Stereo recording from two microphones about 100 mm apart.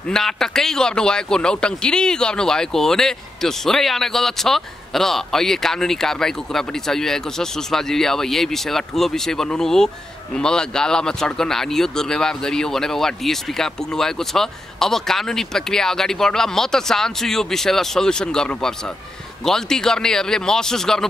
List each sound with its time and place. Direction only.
0.1 s speech: 5° left (ahead or behind)